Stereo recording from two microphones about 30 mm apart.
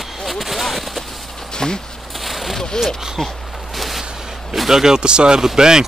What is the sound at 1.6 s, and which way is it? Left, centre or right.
Speech, centre.